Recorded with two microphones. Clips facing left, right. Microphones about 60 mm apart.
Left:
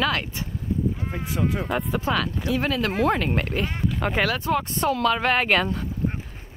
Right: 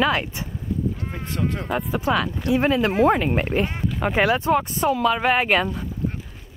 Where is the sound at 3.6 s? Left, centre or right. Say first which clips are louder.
Right 1 dB; centre.